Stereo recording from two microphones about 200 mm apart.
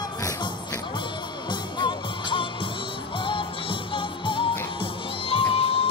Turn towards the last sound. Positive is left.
turn(degrees=30)  # may be behind; listen again after turning